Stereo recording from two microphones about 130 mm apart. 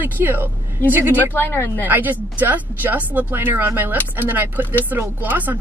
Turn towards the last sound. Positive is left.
turn(degrees=-15)  # may be behind; listen again after turning